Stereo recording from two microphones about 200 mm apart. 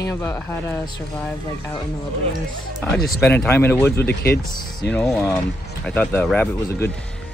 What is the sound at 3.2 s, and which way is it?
Speech, 10° left (ahead or behind).